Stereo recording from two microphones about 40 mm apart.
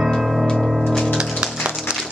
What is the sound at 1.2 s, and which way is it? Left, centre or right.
Music, right.